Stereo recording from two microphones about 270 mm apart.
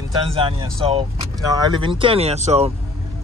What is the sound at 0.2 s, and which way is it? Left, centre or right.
Speech, centre.